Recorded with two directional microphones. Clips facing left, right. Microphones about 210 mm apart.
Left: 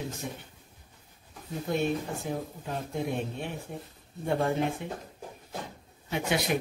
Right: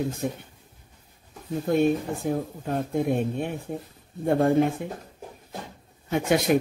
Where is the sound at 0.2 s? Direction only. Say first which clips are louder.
Right 9 dB; 50° right (ahead or behind).